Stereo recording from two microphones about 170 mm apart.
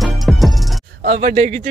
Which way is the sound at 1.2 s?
40° right (ahead or behind).